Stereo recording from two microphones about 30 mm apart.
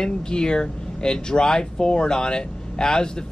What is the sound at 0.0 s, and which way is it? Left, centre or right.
Speech, left.